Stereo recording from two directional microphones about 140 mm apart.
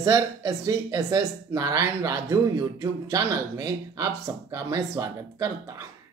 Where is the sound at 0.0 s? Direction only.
25° right (ahead or behind).